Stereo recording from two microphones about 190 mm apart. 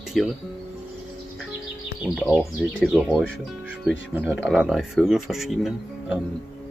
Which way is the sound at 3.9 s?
10° right (ahead or behind).